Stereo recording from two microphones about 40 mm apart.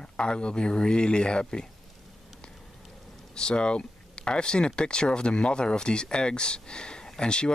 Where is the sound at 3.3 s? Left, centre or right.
Left.